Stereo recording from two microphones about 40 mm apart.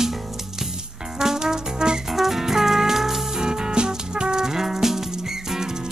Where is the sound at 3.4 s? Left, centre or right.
Centre.